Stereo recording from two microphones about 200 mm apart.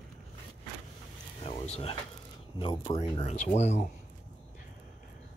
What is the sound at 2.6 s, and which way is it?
Speech, 25° left (ahead or behind).